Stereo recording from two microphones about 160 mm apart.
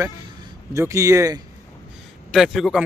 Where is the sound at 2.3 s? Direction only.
Centre (ahead or behind).